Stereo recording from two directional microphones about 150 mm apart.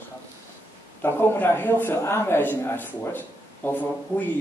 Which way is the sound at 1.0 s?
15° left (ahead or behind).